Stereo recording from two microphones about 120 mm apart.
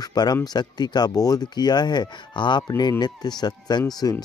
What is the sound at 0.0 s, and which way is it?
Speech, 35° left (ahead or behind).